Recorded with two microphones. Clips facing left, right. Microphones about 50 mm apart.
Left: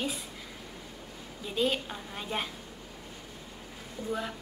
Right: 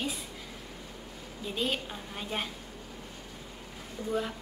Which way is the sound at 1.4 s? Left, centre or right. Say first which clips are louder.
Left 3 dB; centre.